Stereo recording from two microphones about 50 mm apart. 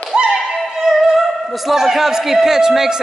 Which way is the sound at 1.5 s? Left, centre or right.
Centre.